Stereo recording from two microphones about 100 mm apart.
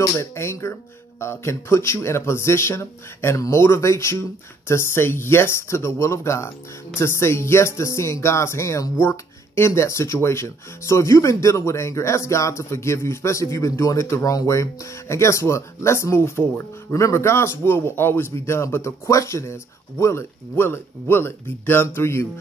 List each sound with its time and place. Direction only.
0.0 s speech: 30° left (ahead or behind)